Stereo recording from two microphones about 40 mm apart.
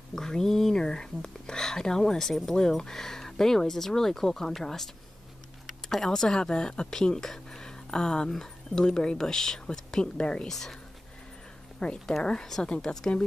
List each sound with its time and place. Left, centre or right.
0.1 s speech: centre
0.7 s speech: centre
10.5 s speech: centre
11.8 s speech: centre